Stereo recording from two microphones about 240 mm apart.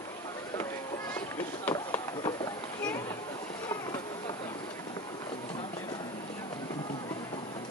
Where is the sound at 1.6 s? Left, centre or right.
Centre.